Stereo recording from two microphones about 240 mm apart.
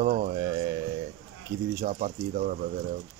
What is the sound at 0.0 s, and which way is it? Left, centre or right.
Horse, right.